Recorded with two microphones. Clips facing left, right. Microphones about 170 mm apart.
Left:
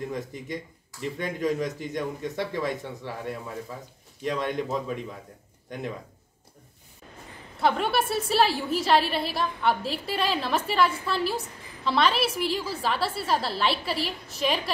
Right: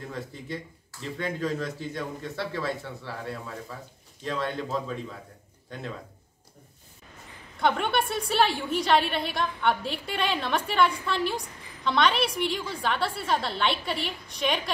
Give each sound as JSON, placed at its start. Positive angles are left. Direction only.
{"t": 0.1, "sound": "speech", "side_deg": 15}
{"t": 7.6, "sound": "a woman's voice", "side_deg": 5}